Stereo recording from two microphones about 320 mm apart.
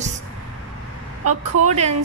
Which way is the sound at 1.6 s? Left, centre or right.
Right.